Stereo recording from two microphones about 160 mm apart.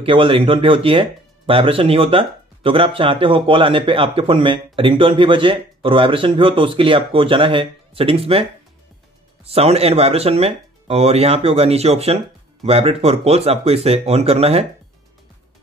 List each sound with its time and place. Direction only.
0.0 s speech: 35° right (ahead or behind)